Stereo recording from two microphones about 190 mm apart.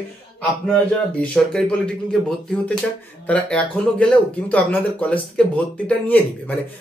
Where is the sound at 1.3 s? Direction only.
5° left (ahead or behind).